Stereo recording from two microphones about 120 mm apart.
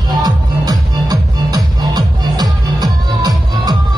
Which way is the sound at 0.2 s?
35° right (ahead or behind).